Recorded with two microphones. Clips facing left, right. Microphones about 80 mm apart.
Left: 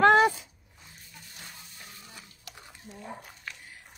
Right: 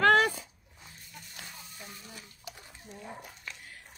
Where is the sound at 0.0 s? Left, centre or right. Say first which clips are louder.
Left 3 dB; centre.